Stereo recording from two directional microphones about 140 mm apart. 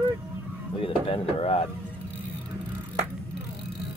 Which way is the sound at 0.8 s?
45° left (ahead or behind).